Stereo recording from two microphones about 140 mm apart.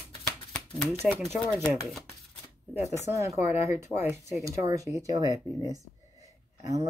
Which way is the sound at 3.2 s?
20° right (ahead or behind).